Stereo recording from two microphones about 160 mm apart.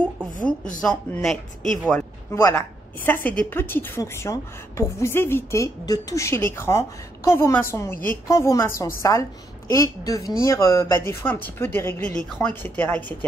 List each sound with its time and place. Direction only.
0.0 s a woman's voice: 10° left (ahead or behind)